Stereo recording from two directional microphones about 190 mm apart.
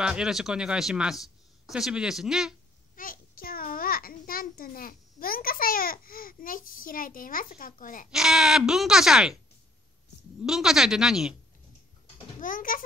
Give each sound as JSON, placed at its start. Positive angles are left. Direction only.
{"t": 0.0, "sound": "speech", "side_deg": -5}
{"t": 3.0, "sound": "a child's voice", "side_deg": 50}
{"t": 8.1, "sound": "speech", "side_deg": -5}
{"t": 10.4, "sound": "speech", "side_deg": 0}
{"t": 12.4, "sound": "a child's voice", "side_deg": 45}